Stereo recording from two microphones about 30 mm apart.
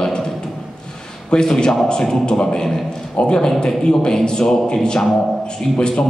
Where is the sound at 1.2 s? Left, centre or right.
Left.